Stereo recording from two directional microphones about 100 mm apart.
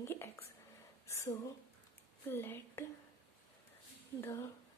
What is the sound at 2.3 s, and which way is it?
Speech, 25° left (ahead or behind).